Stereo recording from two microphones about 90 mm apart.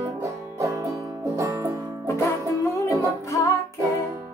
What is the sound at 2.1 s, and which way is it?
Music, 35° left (ahead or behind).